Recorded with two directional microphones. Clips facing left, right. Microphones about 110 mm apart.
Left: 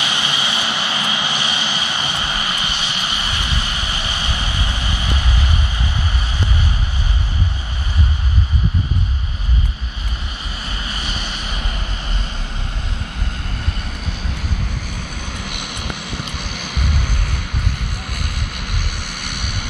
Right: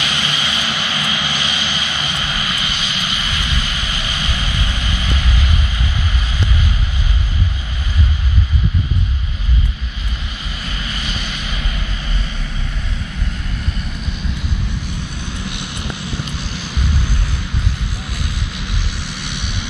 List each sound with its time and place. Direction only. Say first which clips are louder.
0.0 s vehicle: even; 25° left (ahead or behind)
10.6 s vehicle: right 1 dB; 30° left (ahead or behind)
14.9 s vehicle: right 2 dB; 50° left (ahead or behind)